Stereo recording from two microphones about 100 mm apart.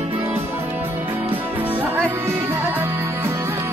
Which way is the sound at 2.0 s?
25° right (ahead or behind).